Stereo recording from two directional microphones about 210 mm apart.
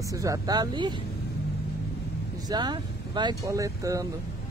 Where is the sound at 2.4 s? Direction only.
20° right (ahead or behind).